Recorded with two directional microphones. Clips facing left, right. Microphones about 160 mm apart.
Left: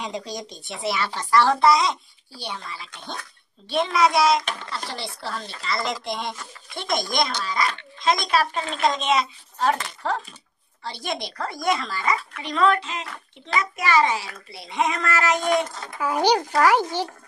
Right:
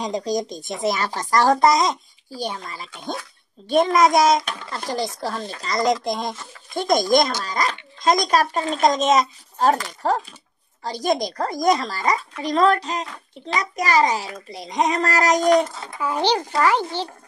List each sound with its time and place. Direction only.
0.0 s speech: 40° right (ahead or behind)
16.0 s a child's voice: 10° left (ahead or behind)